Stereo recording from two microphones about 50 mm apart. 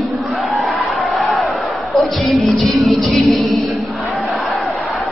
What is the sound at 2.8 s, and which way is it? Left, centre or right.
Music, centre.